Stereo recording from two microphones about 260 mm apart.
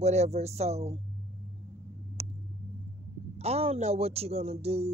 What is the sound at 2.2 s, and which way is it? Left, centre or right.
Vehicle, right.